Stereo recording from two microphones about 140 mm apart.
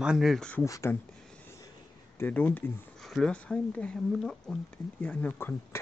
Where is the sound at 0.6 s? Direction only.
25° left (ahead or behind).